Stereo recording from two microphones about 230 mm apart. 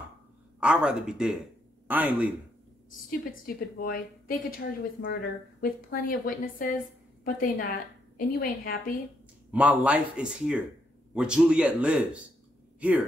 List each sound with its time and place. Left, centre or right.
0.6 s a man's voice: centre
3.1 s a woman's voice: left
9.5 s a man's voice: centre